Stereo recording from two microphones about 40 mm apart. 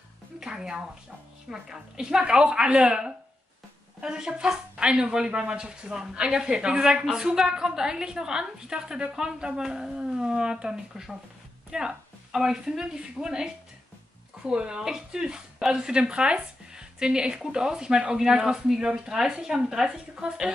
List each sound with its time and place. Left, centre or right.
0.4 s speech: centre